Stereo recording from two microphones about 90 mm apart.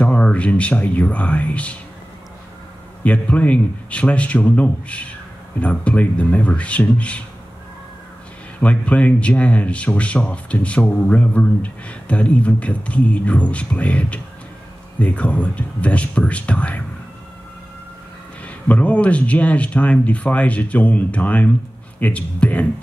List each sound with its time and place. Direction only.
0.0 s speech: 15° left (ahead or behind)
3.0 s speech: 15° left (ahead or behind)
8.5 s speech: 15° left (ahead or behind)
18.4 s speech: 15° left (ahead or behind)